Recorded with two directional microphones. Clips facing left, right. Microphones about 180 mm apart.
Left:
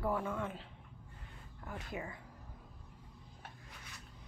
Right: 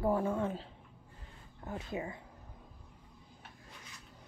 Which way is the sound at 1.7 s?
25° right (ahead or behind).